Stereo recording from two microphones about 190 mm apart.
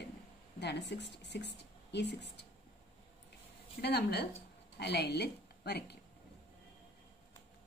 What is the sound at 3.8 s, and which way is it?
A woman's voice, 60° left (ahead or behind).